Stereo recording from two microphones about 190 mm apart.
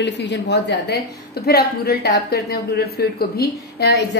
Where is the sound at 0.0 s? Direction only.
65° left (ahead or behind).